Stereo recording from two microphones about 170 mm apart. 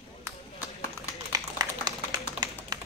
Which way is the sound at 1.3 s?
25° right (ahead or behind).